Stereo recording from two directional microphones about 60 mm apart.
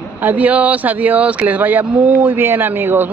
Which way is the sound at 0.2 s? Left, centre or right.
Right.